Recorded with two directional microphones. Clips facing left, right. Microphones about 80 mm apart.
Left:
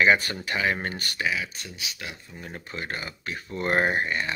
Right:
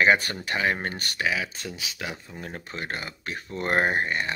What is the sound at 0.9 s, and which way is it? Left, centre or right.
Speech, right.